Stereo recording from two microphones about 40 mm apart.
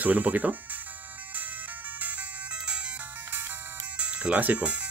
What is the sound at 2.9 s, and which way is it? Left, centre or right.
Ringtone, right.